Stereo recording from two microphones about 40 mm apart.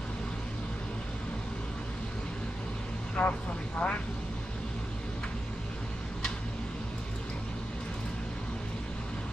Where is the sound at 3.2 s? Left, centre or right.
Left.